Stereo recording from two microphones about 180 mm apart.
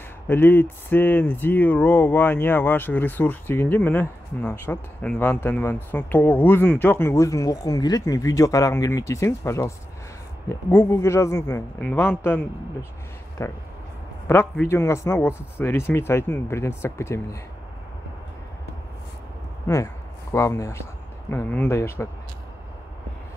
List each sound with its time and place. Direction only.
0.3 s speech: 10° left (ahead or behind)
19.7 s speech: 15° left (ahead or behind)